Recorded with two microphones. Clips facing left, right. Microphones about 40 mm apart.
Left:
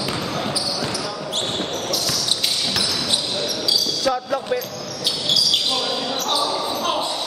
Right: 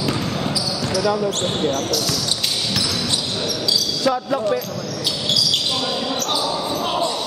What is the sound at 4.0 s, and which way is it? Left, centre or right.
Speech, centre.